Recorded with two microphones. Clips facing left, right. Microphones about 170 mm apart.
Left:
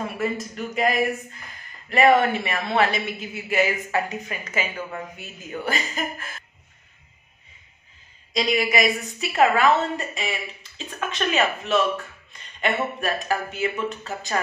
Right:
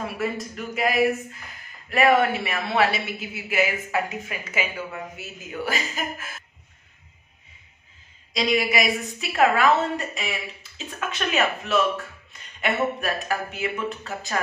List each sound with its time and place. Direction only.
0.0 s a man's voice: 5° right (ahead or behind)
8.3 s a man's voice: centre (ahead or behind)